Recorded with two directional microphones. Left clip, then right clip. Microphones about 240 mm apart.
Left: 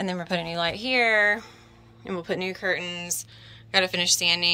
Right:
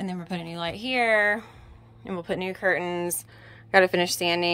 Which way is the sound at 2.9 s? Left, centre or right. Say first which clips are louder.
Right 3 dB; right.